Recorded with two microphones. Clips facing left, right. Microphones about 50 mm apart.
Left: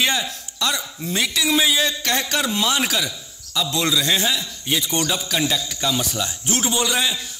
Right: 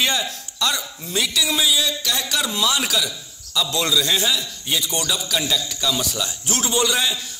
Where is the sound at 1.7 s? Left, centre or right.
Left.